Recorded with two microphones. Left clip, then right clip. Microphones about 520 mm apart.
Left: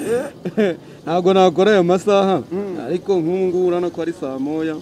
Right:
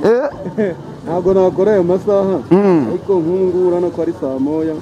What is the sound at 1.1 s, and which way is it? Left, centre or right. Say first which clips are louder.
A man's voice: right 1 dB; left.